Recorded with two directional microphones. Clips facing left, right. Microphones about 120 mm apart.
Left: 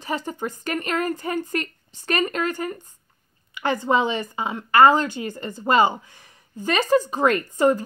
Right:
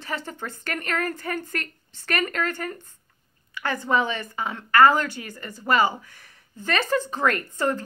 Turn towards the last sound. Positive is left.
turn(degrees=15)  # may be behind; listen again after turning